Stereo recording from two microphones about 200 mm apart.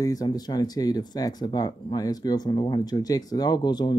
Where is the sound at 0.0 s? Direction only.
20° left (ahead or behind).